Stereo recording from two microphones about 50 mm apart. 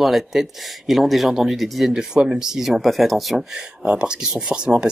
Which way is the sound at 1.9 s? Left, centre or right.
Centre.